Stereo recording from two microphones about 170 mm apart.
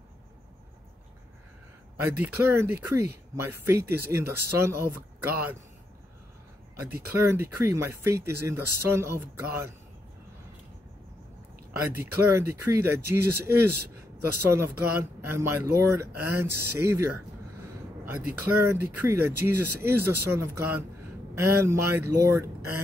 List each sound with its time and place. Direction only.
2.0 s speech: 10° right (ahead or behind)
6.9 s speech: 15° right (ahead or behind)
11.7 s speech: 15° right (ahead or behind)